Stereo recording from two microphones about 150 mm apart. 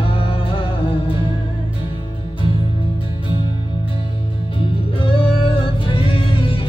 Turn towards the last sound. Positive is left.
turn(degrees=35)  # may be behind; listen again after turning